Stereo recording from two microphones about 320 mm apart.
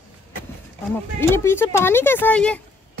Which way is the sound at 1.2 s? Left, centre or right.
Centre.